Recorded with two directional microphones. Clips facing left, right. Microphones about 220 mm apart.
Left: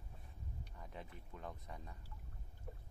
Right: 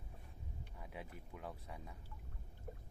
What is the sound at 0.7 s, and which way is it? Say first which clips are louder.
Speech: right 2 dB; 10° right (ahead or behind).